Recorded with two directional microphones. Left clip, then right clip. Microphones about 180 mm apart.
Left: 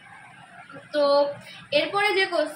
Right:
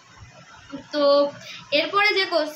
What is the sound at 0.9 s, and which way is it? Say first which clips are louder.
A woman's voice: right 2 dB; 15° right (ahead or behind).